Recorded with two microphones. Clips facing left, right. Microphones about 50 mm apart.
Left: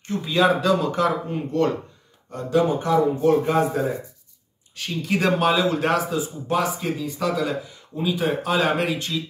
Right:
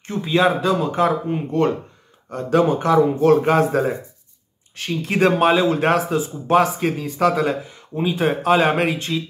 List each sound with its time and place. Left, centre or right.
0.0 s speech: right
2.3 s a man's voice: right
4.7 s a man's voice: right